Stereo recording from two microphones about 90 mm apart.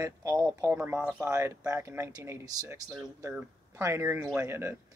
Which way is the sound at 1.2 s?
35° right (ahead or behind).